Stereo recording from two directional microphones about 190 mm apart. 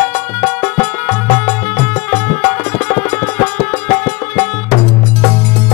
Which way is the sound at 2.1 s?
10° left (ahead or behind).